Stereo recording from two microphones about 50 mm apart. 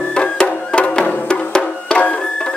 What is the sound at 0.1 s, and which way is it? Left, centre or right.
Music, centre.